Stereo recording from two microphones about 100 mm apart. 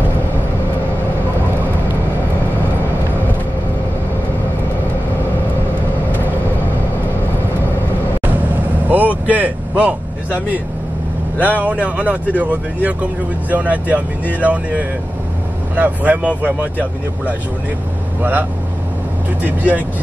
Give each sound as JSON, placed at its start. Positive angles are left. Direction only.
{"t": 8.8, "sound": "vehicle", "side_deg": -15}
{"t": 11.5, "sound": "speech", "side_deg": -15}
{"t": 19.4, "sound": "speech", "side_deg": -15}